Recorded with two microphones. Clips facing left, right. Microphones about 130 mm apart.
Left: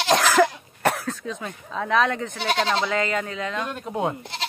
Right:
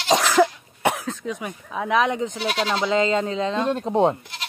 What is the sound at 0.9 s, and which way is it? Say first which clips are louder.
Speech: right 1 dB; 15° right (ahead or behind).